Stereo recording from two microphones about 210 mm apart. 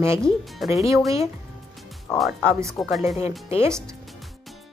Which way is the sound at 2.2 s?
5° right (ahead or behind).